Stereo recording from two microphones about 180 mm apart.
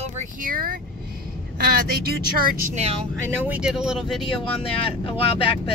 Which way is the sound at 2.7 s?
35° right (ahead or behind).